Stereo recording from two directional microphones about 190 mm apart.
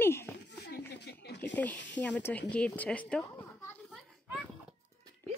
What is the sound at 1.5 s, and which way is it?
Speech, 10° left (ahead or behind).